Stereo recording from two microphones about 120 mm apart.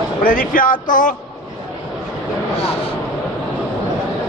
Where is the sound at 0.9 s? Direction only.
90° left.